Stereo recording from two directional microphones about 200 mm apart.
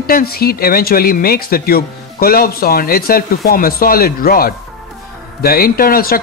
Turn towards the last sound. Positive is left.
turn(degrees=50)  # may be behind; listen again after turning